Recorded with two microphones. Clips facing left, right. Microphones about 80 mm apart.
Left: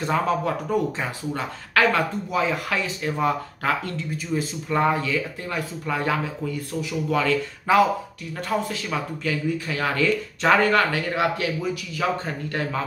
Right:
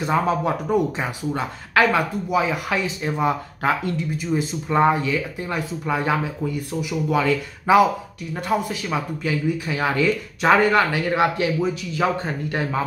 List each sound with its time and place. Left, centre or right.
0.0 s speech: centre